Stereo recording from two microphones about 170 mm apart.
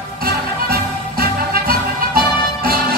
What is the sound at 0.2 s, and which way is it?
Music, 60° right (ahead or behind).